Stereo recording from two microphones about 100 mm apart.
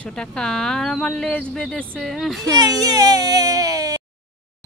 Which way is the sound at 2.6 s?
40° right (ahead or behind).